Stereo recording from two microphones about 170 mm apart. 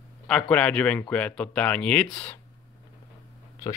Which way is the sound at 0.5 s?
5° left (ahead or behind).